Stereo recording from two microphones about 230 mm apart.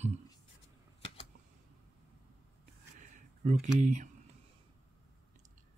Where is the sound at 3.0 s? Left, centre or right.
Right.